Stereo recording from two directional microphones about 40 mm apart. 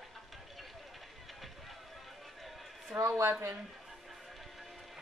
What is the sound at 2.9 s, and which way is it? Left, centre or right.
Speech, centre.